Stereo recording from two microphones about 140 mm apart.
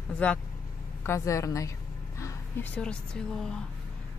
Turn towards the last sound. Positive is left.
turn(degrees=5)  # may be behind; listen again after turning